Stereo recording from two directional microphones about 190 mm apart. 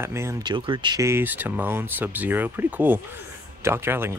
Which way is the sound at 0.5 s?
25° right (ahead or behind).